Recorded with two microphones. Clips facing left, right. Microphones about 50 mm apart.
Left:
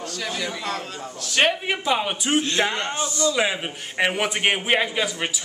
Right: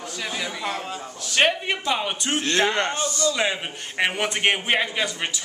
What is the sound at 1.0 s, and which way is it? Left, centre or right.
A man's voice, centre.